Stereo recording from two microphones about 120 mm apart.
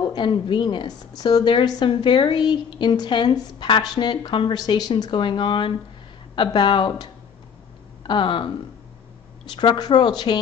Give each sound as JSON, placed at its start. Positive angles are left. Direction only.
{"t": 0.0, "sound": "a woman's voice", "side_deg": 45}
{"t": 9.6, "sound": "a woman's voice", "side_deg": 35}